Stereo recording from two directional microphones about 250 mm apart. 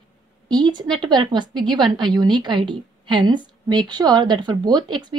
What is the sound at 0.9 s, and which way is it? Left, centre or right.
A woman's voice, centre.